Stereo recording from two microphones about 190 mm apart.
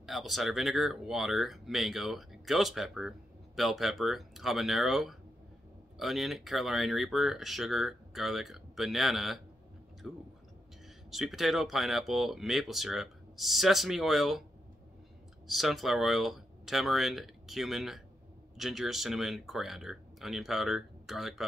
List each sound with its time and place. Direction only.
0.0 s speech: centre (ahead or behind)
15.4 s speech: centre (ahead or behind)